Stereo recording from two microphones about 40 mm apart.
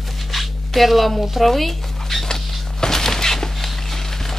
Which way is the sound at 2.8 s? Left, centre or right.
Centre.